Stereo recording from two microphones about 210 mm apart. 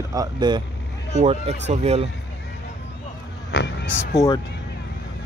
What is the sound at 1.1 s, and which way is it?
Speech, 30° right (ahead or behind).